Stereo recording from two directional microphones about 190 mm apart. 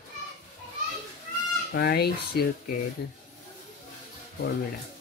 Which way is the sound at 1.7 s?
55° left (ahead or behind).